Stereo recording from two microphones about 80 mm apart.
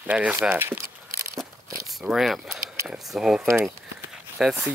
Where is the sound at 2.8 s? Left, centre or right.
Centre.